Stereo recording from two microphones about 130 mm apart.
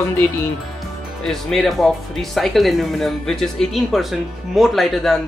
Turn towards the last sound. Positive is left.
turn(degrees=0)  # may be behind; listen again after turning